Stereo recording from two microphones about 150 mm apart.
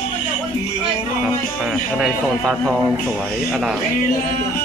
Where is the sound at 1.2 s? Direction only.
Centre (ahead or behind).